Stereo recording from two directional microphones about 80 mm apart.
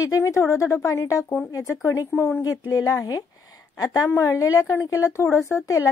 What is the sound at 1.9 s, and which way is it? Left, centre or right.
A woman's voice, left.